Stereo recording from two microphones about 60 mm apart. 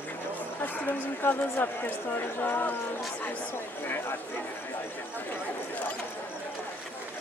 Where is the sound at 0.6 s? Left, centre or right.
Left.